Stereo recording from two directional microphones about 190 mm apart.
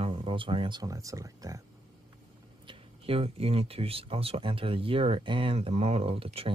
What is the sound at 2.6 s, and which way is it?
A man's voice, 30° right (ahead or behind).